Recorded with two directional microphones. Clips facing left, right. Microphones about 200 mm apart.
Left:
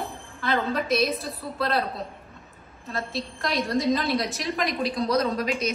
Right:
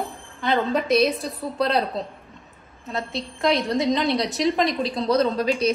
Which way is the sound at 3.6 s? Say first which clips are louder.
Right 2 dB; 20° right (ahead or behind).